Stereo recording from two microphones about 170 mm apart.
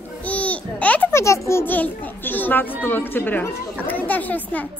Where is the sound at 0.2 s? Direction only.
10° left (ahead or behind).